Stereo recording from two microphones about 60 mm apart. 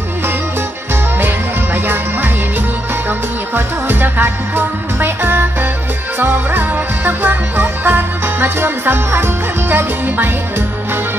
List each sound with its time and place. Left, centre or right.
1.2 s music: right